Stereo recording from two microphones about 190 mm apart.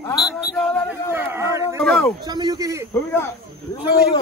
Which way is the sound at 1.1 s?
10° right (ahead or behind).